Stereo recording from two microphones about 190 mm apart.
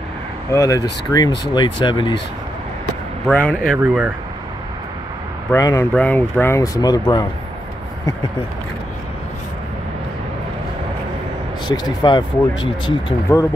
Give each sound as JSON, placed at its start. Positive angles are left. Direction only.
{"t": 0.5, "sound": "speech", "side_deg": 15}
{"t": 3.3, "sound": "speech", "side_deg": 5}
{"t": 3.7, "sound": "speech", "side_deg": -5}
{"t": 5.5, "sound": "speech", "side_deg": 15}
{"t": 11.6, "sound": "speech", "side_deg": 25}